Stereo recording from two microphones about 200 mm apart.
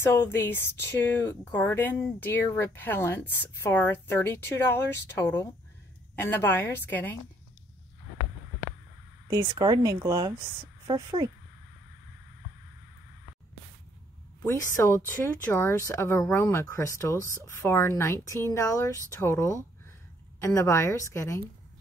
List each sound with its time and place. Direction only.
0.0 s speech: 10° left (ahead or behind)
9.3 s speech: 20° right (ahead or behind)
14.4 s speech: 15° left (ahead or behind)